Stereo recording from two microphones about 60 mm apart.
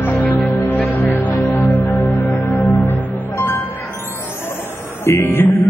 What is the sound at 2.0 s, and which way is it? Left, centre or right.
Music, left.